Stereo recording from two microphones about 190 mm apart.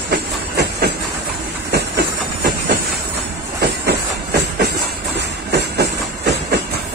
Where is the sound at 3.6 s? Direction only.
60° right (ahead or behind).